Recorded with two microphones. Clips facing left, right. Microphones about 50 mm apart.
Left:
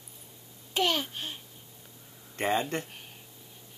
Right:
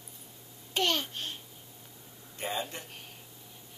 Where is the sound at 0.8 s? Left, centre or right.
Centre.